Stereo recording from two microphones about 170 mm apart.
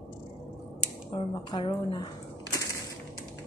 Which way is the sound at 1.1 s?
30° left (ahead or behind).